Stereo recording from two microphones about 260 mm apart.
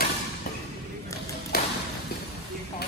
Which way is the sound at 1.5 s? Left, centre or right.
Left.